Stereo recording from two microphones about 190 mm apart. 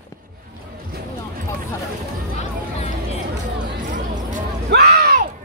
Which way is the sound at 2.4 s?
35° left (ahead or behind).